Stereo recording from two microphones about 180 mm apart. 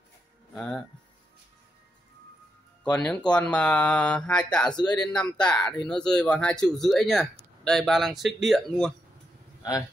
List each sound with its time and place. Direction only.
0.6 s speech: 5° left (ahead or behind)
2.8 s speech: 5° left (ahead or behind)
9.6 s a sound: 20° left (ahead or behind)